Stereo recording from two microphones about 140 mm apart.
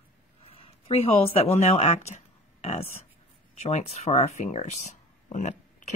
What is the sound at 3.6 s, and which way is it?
Speech, 50° left (ahead or behind).